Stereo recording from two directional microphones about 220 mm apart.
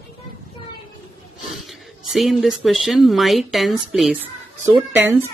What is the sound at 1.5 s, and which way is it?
A woman's voice, centre (ahead or behind).